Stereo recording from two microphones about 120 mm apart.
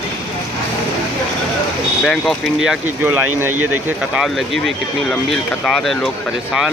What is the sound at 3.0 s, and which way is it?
Speech, 15° right (ahead or behind).